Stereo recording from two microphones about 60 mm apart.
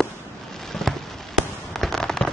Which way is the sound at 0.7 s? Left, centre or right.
Centre.